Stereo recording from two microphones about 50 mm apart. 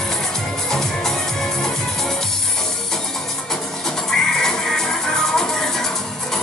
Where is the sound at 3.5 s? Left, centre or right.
Centre.